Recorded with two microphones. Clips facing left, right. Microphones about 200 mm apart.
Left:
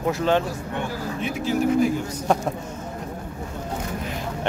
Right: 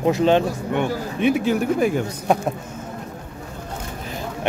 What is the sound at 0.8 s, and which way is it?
A man's voice, 60° right (ahead or behind).